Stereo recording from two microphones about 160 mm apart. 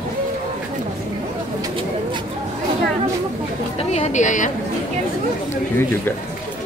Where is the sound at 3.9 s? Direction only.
45° left (ahead or behind).